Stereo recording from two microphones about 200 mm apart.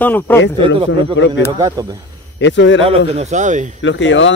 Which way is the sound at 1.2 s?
65° left (ahead or behind).